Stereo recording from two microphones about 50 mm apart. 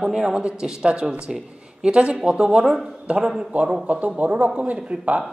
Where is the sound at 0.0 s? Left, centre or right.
Centre.